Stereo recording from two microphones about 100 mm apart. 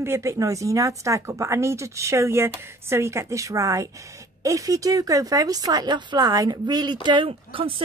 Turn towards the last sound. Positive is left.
turn(degrees=-65)  # may be behind; listen again after turning